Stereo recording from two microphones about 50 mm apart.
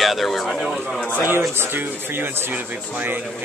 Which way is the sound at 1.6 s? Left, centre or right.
Right.